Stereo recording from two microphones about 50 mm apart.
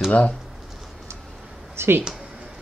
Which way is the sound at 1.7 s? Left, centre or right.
Right.